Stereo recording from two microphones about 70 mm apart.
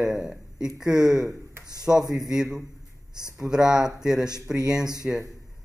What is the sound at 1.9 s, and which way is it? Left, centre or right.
Speech, right.